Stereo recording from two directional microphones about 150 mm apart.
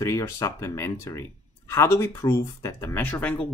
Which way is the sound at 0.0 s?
20° left (ahead or behind).